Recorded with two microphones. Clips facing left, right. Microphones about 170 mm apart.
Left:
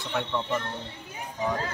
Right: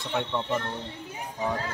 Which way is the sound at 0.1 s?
20° right (ahead or behind).